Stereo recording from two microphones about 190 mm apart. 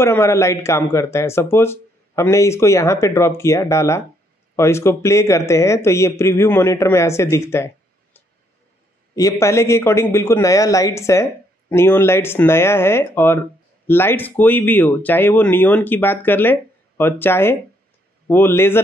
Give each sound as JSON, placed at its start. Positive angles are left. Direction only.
{"t": 0.0, "sound": "a man's voice", "side_deg": 15}